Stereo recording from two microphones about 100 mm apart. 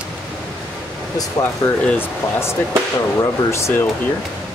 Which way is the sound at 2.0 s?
25° left (ahead or behind).